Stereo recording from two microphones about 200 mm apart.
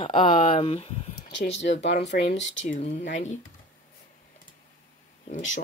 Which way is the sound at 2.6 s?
35° left (ahead or behind).